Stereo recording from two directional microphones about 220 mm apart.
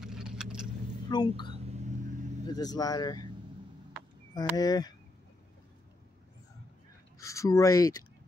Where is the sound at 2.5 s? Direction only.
15° left (ahead or behind).